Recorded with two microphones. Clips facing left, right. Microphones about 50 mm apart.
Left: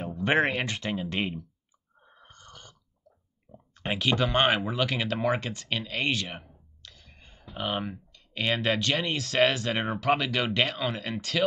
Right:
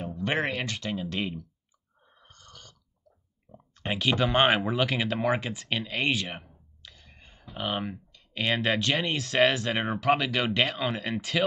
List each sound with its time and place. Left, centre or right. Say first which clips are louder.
0.1 s speech: left 5 dB; centre
2.0 s snoring: left 3 dB; left
3.5 s a sound: even; centre
3.8 s speech: even; centre